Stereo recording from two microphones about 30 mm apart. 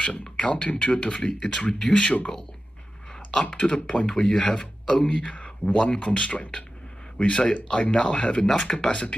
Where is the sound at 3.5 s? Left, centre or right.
Left.